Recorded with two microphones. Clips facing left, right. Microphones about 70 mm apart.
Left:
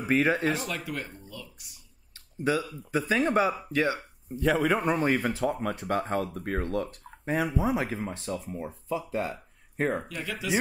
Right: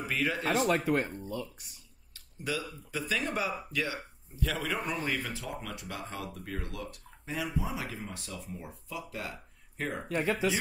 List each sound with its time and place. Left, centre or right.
0.1 s speech: left
0.6 s speech: right
2.1 s speech: left
10.0 s speech: right